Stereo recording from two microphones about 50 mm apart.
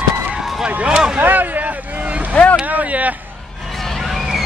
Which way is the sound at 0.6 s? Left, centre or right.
Right.